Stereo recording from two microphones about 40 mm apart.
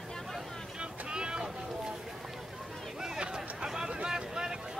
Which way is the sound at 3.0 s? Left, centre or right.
Centre.